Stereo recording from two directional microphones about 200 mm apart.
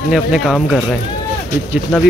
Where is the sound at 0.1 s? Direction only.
Centre (ahead or behind).